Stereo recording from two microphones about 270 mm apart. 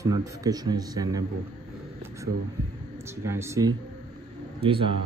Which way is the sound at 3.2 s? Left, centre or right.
Centre.